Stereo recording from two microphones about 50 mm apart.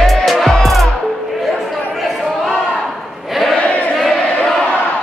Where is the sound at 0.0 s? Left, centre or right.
Centre.